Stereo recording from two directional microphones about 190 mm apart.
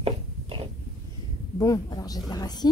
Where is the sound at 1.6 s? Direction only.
20° left (ahead or behind).